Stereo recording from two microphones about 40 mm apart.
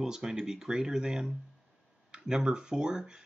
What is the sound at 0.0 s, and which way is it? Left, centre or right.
Speech, centre.